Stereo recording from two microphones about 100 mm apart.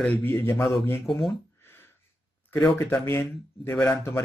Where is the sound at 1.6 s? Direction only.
25° left (ahead or behind).